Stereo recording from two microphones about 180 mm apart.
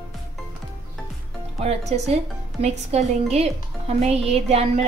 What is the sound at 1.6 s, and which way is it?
A woman's voice, 35° right (ahead or behind).